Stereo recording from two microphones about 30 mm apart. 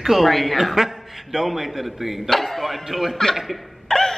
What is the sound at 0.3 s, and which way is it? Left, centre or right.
A man's voice, centre.